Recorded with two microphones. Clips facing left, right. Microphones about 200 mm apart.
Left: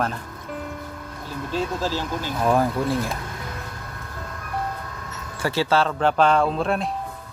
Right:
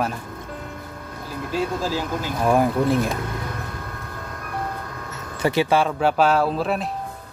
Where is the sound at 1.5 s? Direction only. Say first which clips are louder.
Right 1 dB; 10° right (ahead or behind).